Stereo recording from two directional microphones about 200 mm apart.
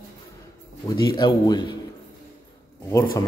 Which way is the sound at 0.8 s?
20° left (ahead or behind).